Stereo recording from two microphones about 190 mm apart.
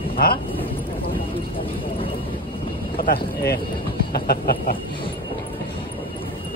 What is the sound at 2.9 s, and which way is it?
Vehicle, 50° left (ahead or behind).